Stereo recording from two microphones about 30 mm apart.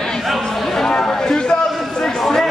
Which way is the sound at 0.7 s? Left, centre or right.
Centre.